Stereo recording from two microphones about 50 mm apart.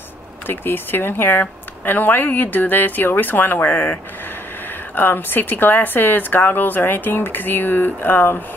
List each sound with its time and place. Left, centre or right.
0.5 s speech: left